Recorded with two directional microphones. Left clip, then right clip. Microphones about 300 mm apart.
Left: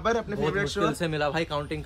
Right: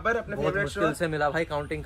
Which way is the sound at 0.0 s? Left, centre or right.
Centre.